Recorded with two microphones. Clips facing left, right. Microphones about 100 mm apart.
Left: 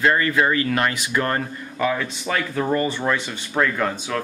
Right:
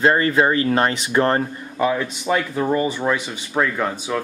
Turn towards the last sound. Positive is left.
turn(degrees=-10)  # may be behind; listen again after turning